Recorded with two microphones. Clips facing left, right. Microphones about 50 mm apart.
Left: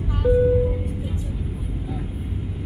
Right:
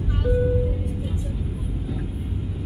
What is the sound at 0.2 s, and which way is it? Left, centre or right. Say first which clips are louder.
Music: left 5 dB; centre.